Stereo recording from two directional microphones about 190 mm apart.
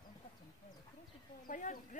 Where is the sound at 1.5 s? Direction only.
40° left (ahead or behind).